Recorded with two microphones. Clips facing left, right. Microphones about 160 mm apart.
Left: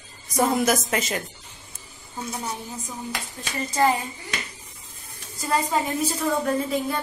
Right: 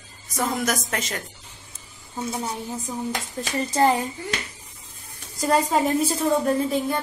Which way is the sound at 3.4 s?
40° right (ahead or behind).